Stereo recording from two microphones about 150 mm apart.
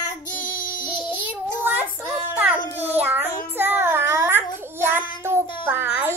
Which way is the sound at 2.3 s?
10° right (ahead or behind).